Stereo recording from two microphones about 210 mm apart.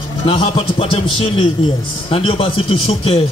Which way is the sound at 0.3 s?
25° left (ahead or behind).